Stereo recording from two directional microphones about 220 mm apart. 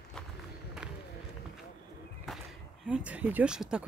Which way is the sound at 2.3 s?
Centre (ahead or behind).